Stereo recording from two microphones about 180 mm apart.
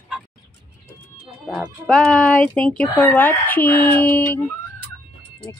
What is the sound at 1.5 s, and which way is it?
Speech, centre (ahead or behind).